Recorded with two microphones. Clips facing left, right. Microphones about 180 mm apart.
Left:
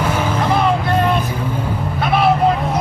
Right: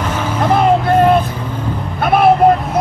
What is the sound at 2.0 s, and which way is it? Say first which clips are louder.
Vehicle: right 5 dB; 50° right (ahead or behind).